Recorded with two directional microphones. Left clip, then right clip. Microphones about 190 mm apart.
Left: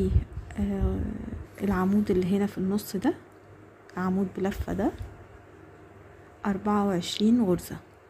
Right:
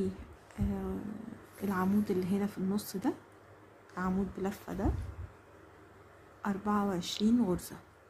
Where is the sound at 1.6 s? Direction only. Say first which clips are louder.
Left 6 dB; 25° left (ahead or behind).